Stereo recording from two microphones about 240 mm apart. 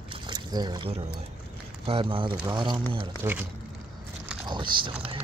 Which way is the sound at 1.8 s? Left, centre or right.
Right.